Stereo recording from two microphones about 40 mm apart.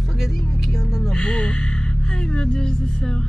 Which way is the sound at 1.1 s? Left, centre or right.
Centre.